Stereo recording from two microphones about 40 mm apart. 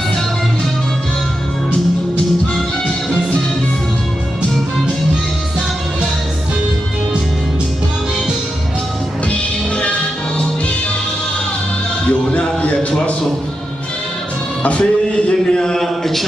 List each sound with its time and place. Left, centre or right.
9.3 s music: left
12.1 s music: left
14.6 s music: left
15.5 s speech: centre